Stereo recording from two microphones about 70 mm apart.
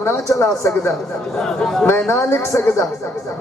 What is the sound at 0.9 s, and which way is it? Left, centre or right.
Speech, centre.